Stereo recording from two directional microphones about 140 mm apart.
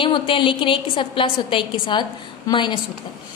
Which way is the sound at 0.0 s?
35° left (ahead or behind).